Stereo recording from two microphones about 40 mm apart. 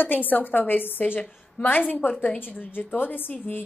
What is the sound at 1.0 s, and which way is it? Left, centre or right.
A woman's voice, left.